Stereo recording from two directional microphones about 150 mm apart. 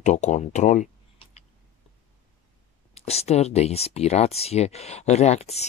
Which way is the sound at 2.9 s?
45° left (ahead or behind).